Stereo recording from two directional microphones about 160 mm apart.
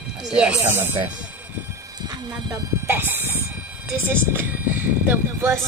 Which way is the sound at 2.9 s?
15° right (ahead or behind).